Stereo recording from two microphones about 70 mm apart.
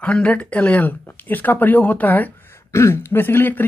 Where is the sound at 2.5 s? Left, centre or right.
Left.